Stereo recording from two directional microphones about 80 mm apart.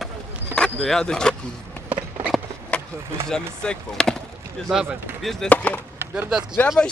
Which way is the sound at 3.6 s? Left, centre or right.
Centre.